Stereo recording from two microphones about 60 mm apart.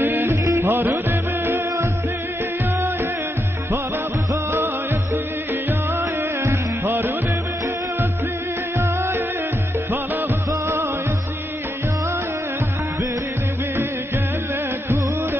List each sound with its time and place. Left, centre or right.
0.0 s music: right
5.7 s music: right
8.7 s music: right